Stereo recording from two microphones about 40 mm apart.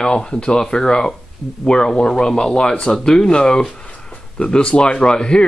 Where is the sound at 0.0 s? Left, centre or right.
Left.